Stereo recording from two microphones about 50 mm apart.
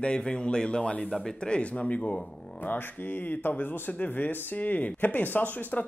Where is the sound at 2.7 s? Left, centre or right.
Left.